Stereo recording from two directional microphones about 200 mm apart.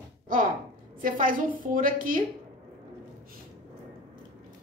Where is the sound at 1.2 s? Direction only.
40° right (ahead or behind).